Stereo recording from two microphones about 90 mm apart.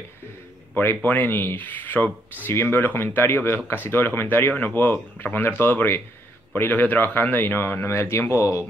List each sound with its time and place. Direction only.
0.7 s speech: 20° left (ahead or behind)